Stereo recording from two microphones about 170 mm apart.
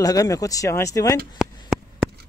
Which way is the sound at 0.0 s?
20° left (ahead or behind).